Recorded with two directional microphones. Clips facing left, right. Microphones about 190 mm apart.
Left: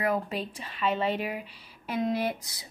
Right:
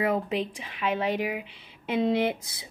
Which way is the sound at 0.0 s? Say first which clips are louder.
Right 3 dB; 20° right (ahead or behind).